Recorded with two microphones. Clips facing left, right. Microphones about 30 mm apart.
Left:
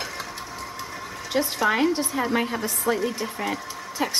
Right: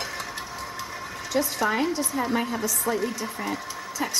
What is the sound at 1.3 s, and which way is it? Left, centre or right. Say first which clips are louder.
A woman's voice: left 2 dB; centre.